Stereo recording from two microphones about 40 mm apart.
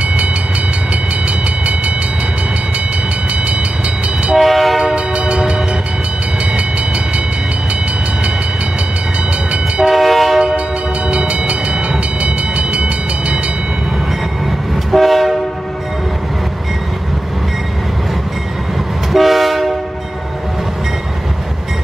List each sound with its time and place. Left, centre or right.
4.4 s train: centre
4.9 s train: right
9.8 s train: centre
11.1 s train: right
14.9 s train: centre
19.1 s train: centre